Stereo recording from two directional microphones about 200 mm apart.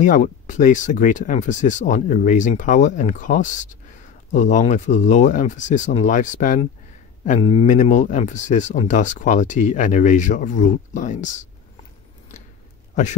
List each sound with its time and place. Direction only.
0.0 s speech: 40° left (ahead or behind)
7.3 s speech: 30° left (ahead or behind)